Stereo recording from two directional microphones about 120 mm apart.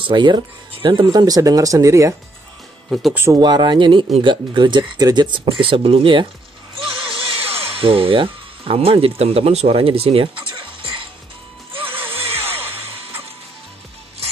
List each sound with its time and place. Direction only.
0.0 s speech: 40° right (ahead or behind)
2.9 s speech: centre (ahead or behind)
3.3 s speech: 35° right (ahead or behind); by 10.5 s 50° right (ahead or behind)
10.5 s music: 45° right (ahead or behind)
11.8 s music: 20° right (ahead or behind)